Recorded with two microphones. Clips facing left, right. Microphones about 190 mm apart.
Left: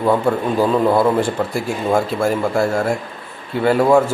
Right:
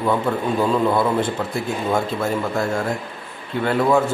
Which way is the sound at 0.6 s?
30° left (ahead or behind).